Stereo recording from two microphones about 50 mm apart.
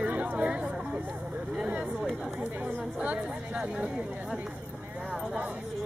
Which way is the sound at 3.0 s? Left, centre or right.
Right.